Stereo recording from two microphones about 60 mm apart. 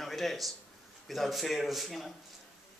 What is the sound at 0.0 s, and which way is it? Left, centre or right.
Speech, centre.